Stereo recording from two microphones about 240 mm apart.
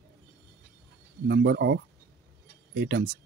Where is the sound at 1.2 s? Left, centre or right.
Right.